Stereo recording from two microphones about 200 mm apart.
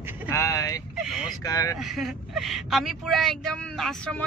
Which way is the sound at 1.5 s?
15° left (ahead or behind).